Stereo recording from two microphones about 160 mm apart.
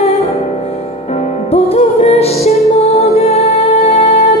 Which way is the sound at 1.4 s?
40° left (ahead or behind).